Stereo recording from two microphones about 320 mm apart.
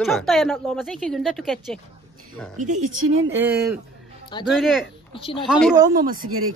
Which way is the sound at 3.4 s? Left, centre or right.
Centre.